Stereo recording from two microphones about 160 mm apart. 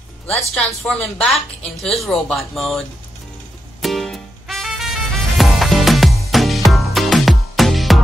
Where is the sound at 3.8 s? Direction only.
Centre (ahead or behind).